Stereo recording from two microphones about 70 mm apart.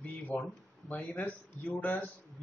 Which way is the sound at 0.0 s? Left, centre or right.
Left.